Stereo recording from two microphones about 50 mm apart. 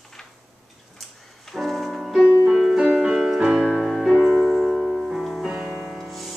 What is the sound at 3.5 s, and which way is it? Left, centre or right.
Music, centre.